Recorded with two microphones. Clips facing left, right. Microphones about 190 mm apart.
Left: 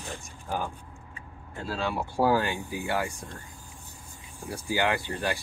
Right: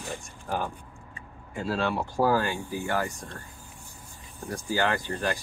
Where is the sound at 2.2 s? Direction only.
20° left (ahead or behind).